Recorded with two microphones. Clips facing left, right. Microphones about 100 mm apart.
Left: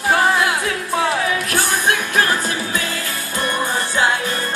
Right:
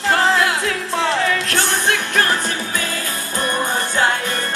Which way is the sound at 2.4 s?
40° right (ahead or behind).